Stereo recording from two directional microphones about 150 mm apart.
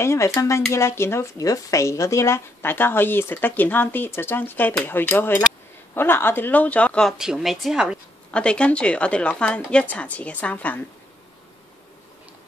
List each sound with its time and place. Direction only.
0.0 s speech: 20° left (ahead or behind); by 8.0 s 5° right (ahead or behind)
8.3 s speech: 5° left (ahead or behind)